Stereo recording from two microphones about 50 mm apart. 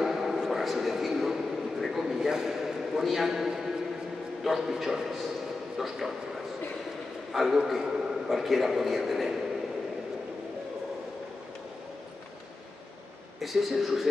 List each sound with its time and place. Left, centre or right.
0.0 s a sound: centre
4.5 s a man's voice: centre
7.3 s a man's voice: centre
13.4 s a man's voice: centre